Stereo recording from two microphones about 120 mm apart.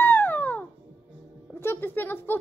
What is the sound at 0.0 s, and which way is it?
Music, 15° left (ahead or behind).